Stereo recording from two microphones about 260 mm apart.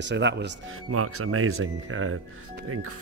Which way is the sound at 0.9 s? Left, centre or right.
Right.